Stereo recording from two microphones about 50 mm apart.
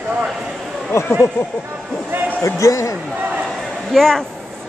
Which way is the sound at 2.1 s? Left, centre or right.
Right.